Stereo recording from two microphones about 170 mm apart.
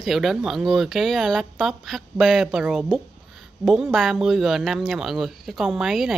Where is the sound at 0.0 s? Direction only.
Centre (ahead or behind).